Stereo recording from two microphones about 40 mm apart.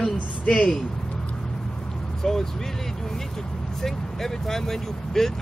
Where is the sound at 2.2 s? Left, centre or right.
Centre.